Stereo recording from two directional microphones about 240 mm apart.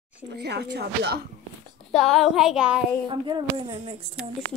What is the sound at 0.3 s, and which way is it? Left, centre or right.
Speech, right.